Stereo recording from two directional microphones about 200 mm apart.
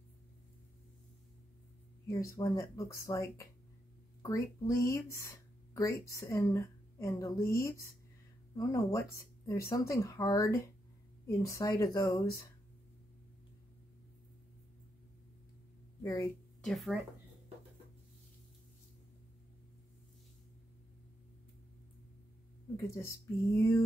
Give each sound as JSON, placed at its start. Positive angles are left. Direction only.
{"t": 2.0, "sound": "a woman's voice", "side_deg": 15}
{"t": 16.0, "sound": "speech", "side_deg": 15}
{"t": 16.6, "sound": "speech", "side_deg": 0}
{"t": 22.8, "sound": "a woman's voice", "side_deg": 15}